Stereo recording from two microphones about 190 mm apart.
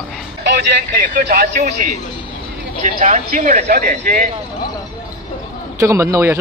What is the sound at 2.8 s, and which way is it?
Speech, 40° right (ahead or behind).